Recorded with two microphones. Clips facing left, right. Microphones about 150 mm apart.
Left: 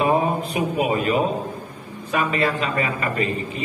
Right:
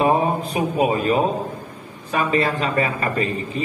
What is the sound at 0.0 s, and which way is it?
A man's voice, 35° right (ahead or behind).